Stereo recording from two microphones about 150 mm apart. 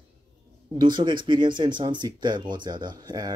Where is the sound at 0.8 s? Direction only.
30° right (ahead or behind).